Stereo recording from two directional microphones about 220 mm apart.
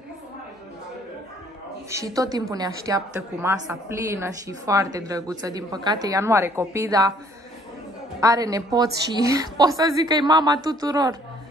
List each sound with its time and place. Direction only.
1.9 s a woman's voice: 15° right (ahead or behind)
8.2 s a woman's voice: 15° right (ahead or behind)